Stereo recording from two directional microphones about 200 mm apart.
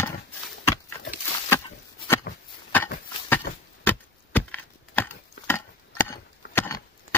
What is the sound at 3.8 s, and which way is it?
Wood, 10° left (ahead or behind).